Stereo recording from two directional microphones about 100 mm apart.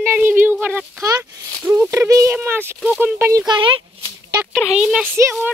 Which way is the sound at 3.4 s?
55° right (ahead or behind).